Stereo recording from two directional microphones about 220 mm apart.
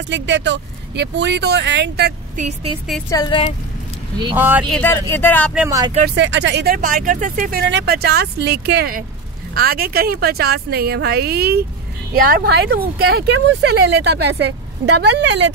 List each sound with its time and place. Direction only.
0.1 s speech: 55° right (ahead or behind)
2.4 s speech: 25° right (ahead or behind)
3.1 s speech: 20° left (ahead or behind)
4.4 s speech: 10° right (ahead or behind)
4.6 s speech: 5° left (ahead or behind)
5.5 s speech: 10° right (ahead or behind)
6.0 s speech: 55° right (ahead or behind)